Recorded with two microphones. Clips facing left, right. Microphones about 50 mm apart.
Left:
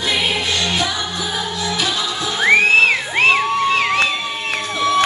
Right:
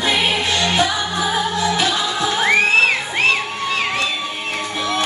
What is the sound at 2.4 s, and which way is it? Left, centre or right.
Music, left.